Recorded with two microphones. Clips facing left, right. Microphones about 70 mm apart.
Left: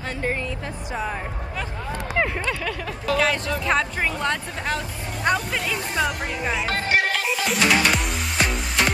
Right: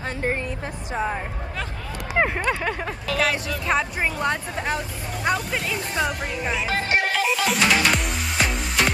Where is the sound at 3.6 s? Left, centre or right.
Centre.